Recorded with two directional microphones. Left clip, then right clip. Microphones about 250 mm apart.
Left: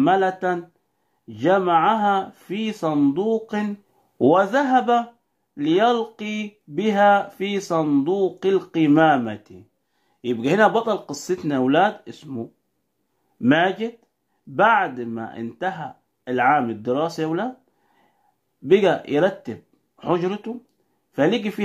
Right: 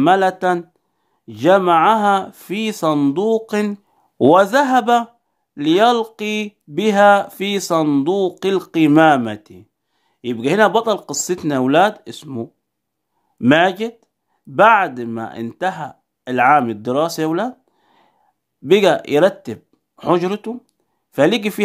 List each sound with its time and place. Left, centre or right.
0.0 s speech: right